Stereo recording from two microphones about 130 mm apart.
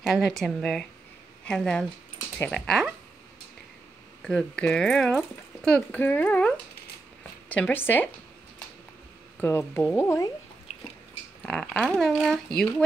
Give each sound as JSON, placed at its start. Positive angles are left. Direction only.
{"t": 0.0, "sound": "speech", "side_deg": 0}
{"t": 4.2, "sound": "speech", "side_deg": 5}
{"t": 5.9, "sound": "speech", "side_deg": 15}
{"t": 9.4, "sound": "speech", "side_deg": 15}
{"t": 10.7, "sound": "a sound", "side_deg": 50}
{"t": 11.4, "sound": "speech", "side_deg": 5}